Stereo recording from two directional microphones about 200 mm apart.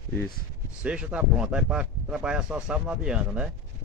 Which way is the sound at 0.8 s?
5° right (ahead or behind).